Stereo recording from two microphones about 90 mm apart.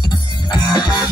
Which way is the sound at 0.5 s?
50° left (ahead or behind).